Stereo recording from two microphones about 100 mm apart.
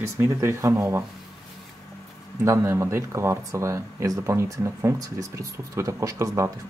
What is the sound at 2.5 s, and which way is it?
Speech, 30° right (ahead or behind).